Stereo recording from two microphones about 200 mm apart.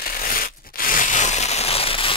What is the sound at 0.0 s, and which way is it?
Rub, 45° left (ahead or behind).